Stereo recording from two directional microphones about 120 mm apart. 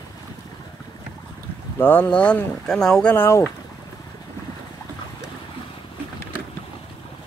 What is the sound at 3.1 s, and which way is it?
Speech, 20° left (ahead or behind).